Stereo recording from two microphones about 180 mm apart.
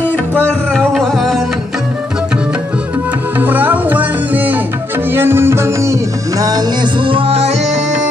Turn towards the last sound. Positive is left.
turn(degrees=-35)  # may be behind; listen again after turning